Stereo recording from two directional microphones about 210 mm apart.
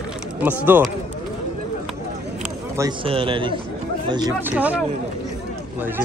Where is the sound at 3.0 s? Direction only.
25° right (ahead or behind).